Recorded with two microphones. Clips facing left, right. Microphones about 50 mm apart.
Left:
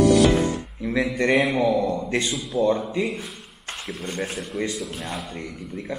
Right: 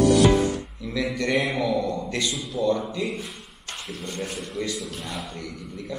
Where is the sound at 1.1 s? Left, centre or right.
Left.